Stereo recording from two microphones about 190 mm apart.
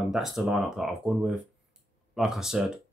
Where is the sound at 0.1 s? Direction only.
Centre (ahead or behind).